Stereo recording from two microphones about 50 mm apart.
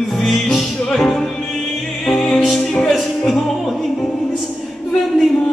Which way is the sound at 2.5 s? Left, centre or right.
Centre.